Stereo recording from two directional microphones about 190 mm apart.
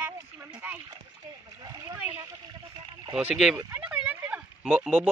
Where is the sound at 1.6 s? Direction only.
20° right (ahead or behind).